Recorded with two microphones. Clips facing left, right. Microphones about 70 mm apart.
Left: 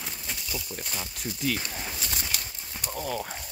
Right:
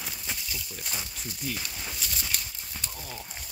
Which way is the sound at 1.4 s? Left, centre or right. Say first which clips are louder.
Left 7 dB; left.